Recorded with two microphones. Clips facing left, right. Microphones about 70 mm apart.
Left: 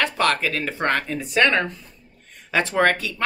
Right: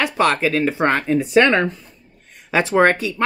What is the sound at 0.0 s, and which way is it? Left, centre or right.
Speech, centre.